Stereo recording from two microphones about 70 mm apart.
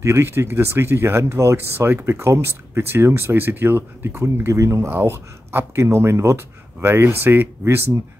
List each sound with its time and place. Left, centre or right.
0.0 s speech: right
4.8 s speech: right